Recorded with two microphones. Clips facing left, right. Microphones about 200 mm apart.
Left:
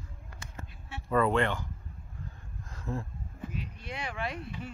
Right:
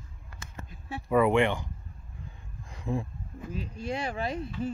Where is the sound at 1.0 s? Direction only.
15° right (ahead or behind).